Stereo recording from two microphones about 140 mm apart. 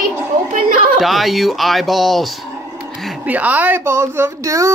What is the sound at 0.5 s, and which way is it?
Chatter, 75° right (ahead or behind).